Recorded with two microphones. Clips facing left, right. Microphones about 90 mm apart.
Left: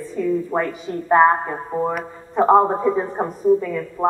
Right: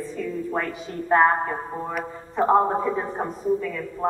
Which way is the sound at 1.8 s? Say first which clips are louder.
Left 6 dB; 20° left (ahead or behind).